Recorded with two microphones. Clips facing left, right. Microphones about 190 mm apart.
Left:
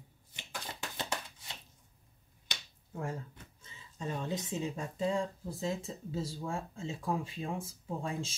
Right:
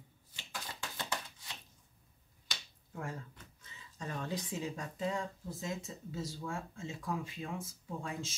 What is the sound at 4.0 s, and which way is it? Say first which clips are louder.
Speech: left 3 dB; 25° left (ahead or behind).